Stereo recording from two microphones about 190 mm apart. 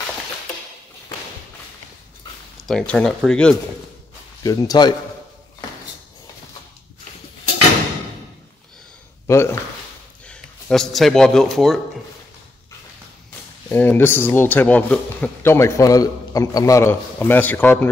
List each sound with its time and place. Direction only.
2.5 s speech: centre (ahead or behind)
4.4 s speech: 20° left (ahead or behind)
9.3 s a sound: 15° left (ahead or behind)
10.2 s speech: 5° left (ahead or behind)
13.7 s a man's voice: 10° left (ahead or behind)